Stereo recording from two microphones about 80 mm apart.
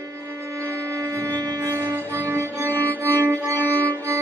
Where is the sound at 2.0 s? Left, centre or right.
Right.